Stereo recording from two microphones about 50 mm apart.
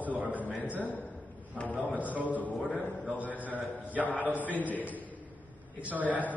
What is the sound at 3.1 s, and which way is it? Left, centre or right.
Mantra, right.